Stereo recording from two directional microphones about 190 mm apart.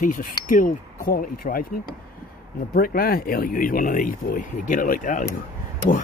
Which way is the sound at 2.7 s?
50° left (ahead or behind).